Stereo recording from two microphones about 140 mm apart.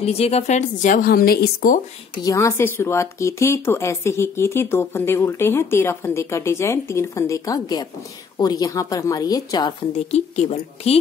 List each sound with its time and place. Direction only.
0.0 s a woman's voice: 50° left (ahead or behind); by 1.8 s 85° left
2.2 s speech: 20° left (ahead or behind)
10.1 s a woman's voice: 55° left (ahead or behind)